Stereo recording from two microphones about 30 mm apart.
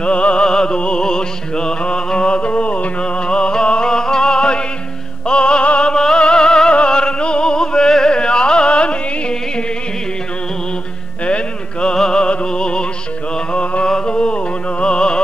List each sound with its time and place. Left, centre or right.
0.0 s music: left
0.5 s music: left
3.0 s music: left
11.2 s music: left
11.9 s music: left
13.5 s mantra: left
13.8 s a sound: left
14.1 s music: left